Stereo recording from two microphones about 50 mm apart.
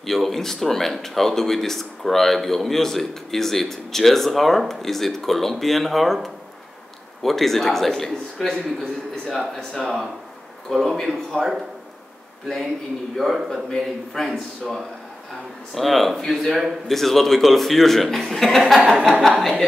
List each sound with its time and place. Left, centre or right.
0.0 s speech: centre
7.2 s speech: centre
9.7 s speech: centre
13.1 s speech: centre